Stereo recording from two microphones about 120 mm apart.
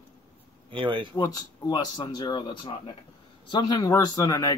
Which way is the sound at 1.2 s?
30° left (ahead or behind).